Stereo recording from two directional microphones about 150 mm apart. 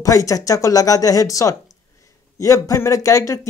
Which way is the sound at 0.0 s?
20° left (ahead or behind).